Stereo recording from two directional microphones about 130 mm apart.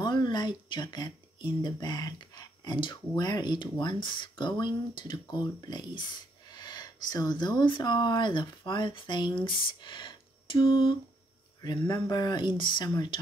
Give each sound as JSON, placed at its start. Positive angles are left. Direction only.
{"t": 0.0, "sound": "speech", "side_deg": 35}